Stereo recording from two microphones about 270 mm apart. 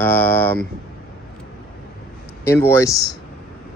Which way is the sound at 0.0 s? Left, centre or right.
Centre.